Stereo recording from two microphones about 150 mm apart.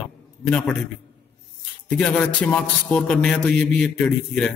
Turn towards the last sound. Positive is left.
turn(degrees=5)  # may be behind; listen again after turning